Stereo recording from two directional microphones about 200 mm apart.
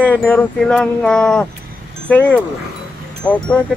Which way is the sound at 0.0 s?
10° left (ahead or behind).